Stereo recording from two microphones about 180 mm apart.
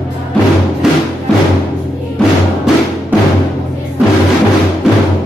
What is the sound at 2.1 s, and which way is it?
Music, 5° right (ahead or behind).